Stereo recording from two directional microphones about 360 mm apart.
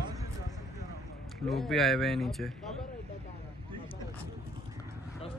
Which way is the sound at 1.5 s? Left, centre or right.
Centre.